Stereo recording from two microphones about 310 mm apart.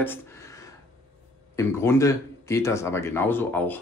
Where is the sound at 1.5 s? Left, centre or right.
Centre.